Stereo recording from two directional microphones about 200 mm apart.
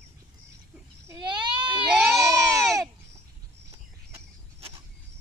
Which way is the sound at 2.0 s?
15° right (ahead or behind).